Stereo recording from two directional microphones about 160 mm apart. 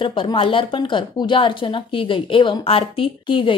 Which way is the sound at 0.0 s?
30° left (ahead or behind).